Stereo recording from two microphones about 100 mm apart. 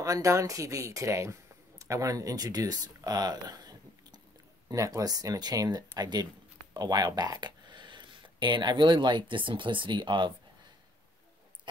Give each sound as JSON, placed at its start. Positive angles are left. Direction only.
{"t": 0.0, "sound": "speech", "side_deg": -30}
{"t": 4.6, "sound": "speech", "side_deg": -30}